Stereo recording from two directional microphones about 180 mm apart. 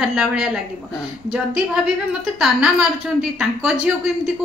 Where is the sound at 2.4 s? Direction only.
Centre (ahead or behind).